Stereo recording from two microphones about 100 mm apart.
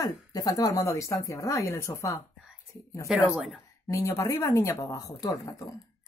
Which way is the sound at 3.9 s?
30° left (ahead or behind).